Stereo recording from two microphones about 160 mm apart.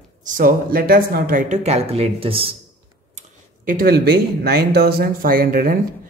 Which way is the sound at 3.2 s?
60° right (ahead or behind).